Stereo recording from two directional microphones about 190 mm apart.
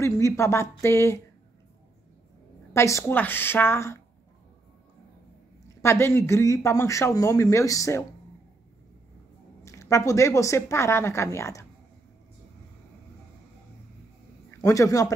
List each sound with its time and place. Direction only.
0.0 s speech: 15° left (ahead or behind)
2.7 s speech: 15° left (ahead or behind)
5.8 s speech: 15° left (ahead or behind)
9.7 s speech: 15° left (ahead or behind)
14.5 s speech: 15° left (ahead or behind)